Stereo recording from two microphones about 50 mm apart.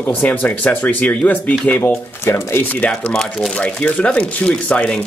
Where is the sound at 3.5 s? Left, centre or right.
Left.